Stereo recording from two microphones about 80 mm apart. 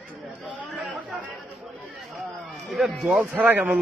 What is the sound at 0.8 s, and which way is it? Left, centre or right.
Speech, centre.